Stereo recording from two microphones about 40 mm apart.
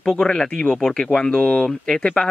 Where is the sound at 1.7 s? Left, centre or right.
Centre.